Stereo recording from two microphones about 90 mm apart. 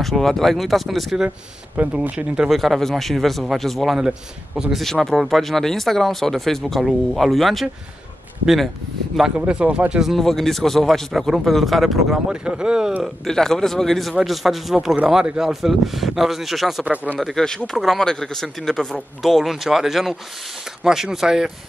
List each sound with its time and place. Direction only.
0.0 s a man's voice: centre (ahead or behind)
2.0 s speech: 10° right (ahead or behind)
2.5 s a man's voice: centre (ahead or behind)
9.1 s a man's voice: 5° right (ahead or behind)
13.3 s a man's voice: 5° left (ahead or behind)
16.8 s speech: 15° right (ahead or behind)
17.2 s a man's voice: 5° left (ahead or behind)